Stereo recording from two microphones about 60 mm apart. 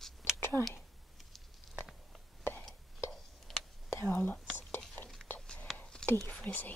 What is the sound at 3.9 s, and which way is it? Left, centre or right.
Whispering, left.